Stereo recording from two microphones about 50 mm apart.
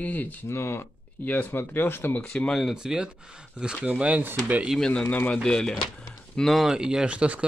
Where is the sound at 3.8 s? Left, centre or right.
Right.